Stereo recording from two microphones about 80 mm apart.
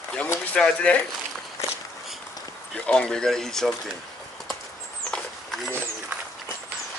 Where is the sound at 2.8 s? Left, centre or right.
Centre.